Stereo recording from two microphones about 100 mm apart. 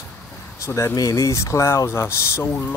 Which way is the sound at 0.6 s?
30° left (ahead or behind).